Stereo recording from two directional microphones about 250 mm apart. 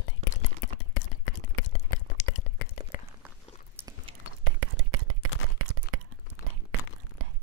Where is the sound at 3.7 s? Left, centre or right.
Centre.